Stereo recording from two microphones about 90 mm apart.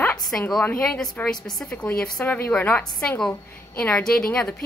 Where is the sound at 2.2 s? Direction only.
20° left (ahead or behind).